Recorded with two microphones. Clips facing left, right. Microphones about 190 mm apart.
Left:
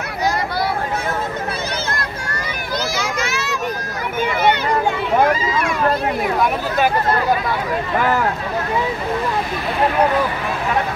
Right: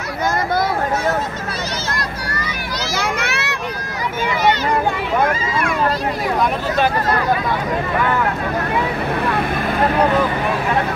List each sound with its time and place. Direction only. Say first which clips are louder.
3.0 s children playing: right 1 dB; 65° right (ahead or behind)